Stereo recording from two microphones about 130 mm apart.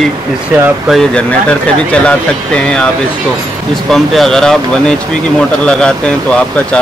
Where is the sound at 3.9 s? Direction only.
Centre (ahead or behind).